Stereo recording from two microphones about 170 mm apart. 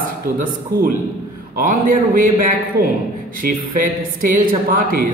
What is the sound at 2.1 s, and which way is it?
A man's voice, 55° right (ahead or behind).